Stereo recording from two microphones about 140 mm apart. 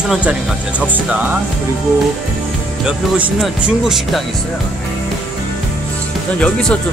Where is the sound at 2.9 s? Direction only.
10° right (ahead or behind).